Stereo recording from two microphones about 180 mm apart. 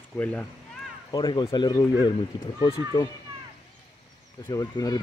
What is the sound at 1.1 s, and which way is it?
Speech, 25° left (ahead or behind).